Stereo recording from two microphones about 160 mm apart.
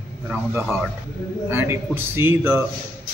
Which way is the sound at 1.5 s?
15° right (ahead or behind).